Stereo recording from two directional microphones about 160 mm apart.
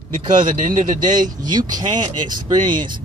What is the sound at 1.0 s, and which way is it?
Speech, 25° right (ahead or behind).